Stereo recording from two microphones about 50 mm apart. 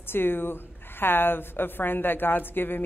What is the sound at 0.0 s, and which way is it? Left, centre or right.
A woman's voice, left.